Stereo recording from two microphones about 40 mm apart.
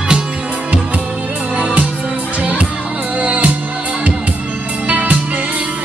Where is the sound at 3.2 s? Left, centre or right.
Right.